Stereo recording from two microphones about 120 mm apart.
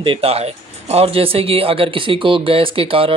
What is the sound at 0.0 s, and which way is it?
Speech, 50° right (ahead or behind).